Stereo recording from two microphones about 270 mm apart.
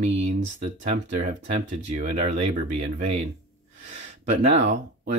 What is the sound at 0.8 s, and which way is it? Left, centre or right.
Speech, right.